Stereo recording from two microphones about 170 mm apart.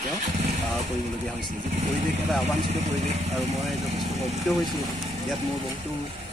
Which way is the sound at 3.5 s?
Centre (ahead or behind).